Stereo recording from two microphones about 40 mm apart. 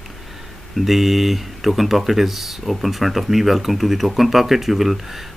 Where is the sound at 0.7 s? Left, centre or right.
Centre.